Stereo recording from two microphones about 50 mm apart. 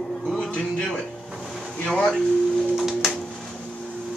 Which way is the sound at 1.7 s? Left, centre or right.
Centre.